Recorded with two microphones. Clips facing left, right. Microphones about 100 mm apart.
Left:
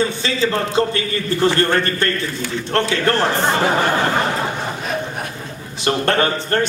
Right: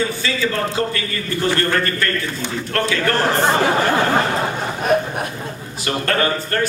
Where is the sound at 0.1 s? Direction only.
25° left (ahead or behind).